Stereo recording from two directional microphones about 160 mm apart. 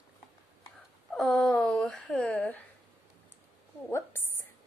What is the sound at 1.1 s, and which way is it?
A woman's voice, centre (ahead or behind).